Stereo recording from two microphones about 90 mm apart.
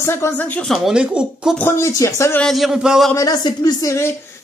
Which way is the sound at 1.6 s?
30° left (ahead or behind).